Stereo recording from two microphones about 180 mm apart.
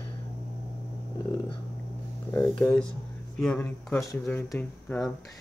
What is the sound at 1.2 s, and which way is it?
Dog, 30° left (ahead or behind).